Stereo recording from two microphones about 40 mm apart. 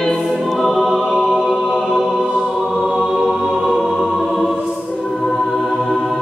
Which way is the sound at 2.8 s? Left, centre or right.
Right.